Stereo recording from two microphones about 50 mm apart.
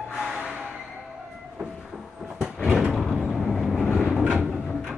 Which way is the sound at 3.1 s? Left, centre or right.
Centre.